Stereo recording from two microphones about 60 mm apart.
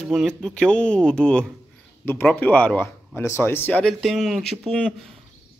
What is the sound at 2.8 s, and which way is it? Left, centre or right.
Speech, left.